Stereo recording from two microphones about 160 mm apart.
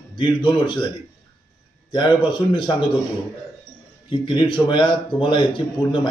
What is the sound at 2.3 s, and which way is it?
Speech, 30° left (ahead or behind).